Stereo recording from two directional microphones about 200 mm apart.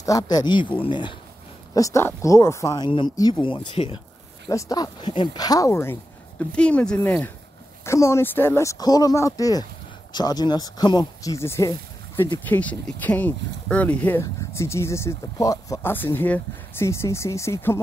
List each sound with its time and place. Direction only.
0.0 s speech: 15° left (ahead or behind)
4.5 s speech: 15° left (ahead or behind)
12.4 s speech: 5° left (ahead or behind)